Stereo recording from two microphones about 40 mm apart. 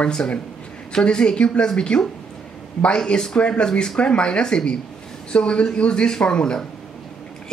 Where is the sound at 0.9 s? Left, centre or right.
Left.